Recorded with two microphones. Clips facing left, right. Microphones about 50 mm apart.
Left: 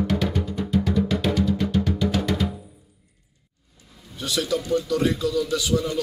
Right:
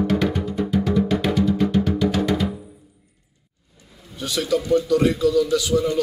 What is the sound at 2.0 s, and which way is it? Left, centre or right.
Music, centre.